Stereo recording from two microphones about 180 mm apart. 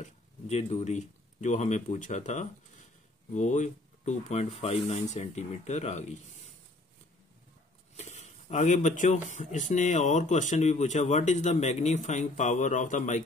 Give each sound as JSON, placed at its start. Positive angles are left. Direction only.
{"t": 0.0, "sound": "speech", "side_deg": 35}
{"t": 7.9, "sound": "speech", "side_deg": 40}